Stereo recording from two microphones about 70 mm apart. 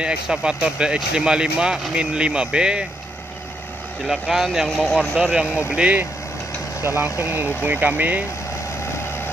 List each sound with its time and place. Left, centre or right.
0.0 s speech: centre
4.1 s speech: centre
6.8 s speech: right
7.2 s speech: right